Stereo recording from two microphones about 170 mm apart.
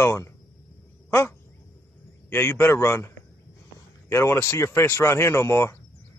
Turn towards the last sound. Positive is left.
turn(degrees=15)  # may be behind; listen again after turning